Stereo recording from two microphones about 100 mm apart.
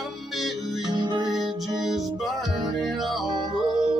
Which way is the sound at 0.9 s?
50° right (ahead or behind).